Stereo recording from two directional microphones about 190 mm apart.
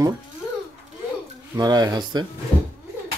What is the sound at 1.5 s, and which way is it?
Speech, 20° right (ahead or behind).